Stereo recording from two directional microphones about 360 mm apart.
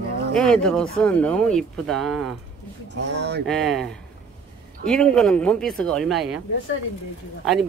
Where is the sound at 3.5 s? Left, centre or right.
Centre.